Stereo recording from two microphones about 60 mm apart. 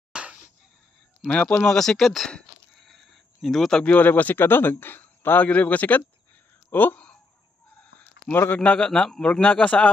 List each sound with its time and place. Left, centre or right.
0.1 s a sound: centre
1.2 s speech: left
1.7 s speech: centre
2.7 s a sound: centre
3.8 s a man's voice: left
8.3 s a man's voice: left
8.7 s speech: centre